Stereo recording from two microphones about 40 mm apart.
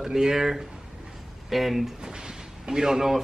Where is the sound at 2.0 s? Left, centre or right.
Centre.